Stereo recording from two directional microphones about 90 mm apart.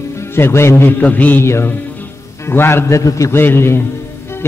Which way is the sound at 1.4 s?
30° left (ahead or behind).